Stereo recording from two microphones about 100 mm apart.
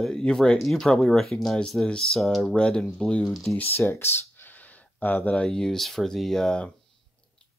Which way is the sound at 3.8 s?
25° left (ahead or behind).